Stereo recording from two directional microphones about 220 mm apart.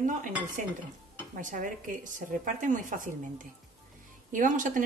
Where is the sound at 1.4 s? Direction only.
35° right (ahead or behind).